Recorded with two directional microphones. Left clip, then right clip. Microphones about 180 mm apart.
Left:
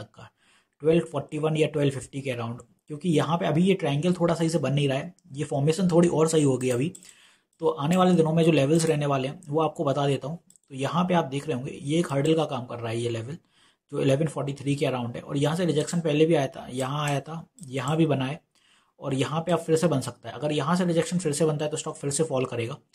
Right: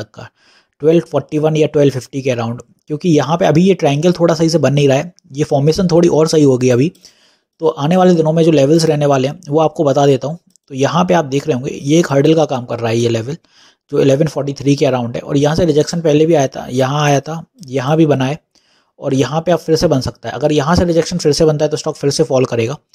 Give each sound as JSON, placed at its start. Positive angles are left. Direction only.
{"t": 0.0, "sound": "speech", "side_deg": -35}